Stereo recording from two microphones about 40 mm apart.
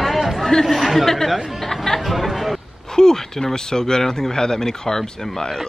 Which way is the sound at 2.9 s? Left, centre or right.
Centre.